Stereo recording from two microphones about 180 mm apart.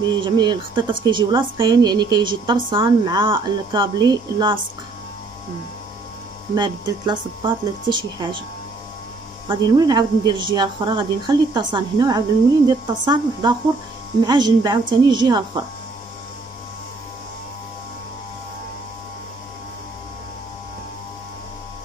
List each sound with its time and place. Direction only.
0.1 s a woman's voice: 25° right (ahead or behind)
6.5 s a woman's voice: 25° right (ahead or behind)
9.5 s a woman's voice: 20° right (ahead or behind)